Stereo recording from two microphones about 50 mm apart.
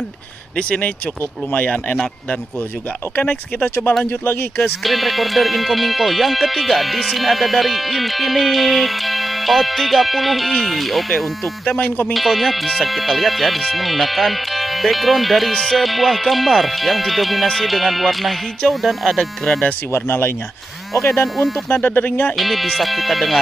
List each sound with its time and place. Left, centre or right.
0.6 s speech: left
3.2 s speech: left
4.2 s speech: left
4.8 s speech: centre
15.5 s music: centre
15.8 s speech: centre
19.9 s speech: left
21.1 s speech: centre
21.6 s speech: left
22.3 s speech: centre